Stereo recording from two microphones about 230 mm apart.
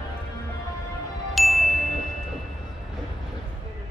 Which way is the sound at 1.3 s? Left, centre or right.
Centre.